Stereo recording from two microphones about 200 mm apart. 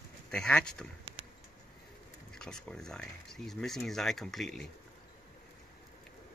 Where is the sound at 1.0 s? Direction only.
25° right (ahead or behind).